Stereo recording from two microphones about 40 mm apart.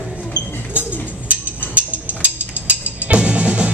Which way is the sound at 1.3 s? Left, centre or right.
Right.